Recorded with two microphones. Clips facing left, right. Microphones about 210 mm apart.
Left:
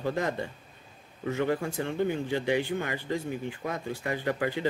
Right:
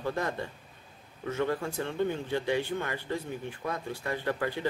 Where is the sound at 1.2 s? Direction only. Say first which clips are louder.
Left 2 dB; 15° left (ahead or behind).